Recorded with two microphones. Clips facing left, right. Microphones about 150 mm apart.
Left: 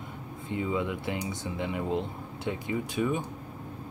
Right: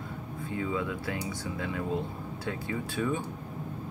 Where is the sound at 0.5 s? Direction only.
20° left (ahead or behind).